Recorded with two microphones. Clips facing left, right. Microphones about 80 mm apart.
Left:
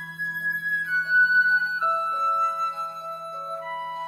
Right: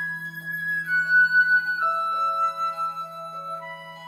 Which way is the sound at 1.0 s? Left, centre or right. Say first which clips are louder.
Right 1 dB; centre.